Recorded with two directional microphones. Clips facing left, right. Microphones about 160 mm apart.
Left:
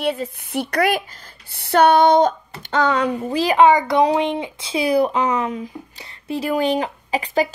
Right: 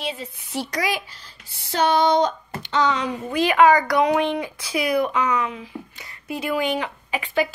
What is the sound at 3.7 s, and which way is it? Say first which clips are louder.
A child's voice: left 2 dB; 25° left (ahead or behind).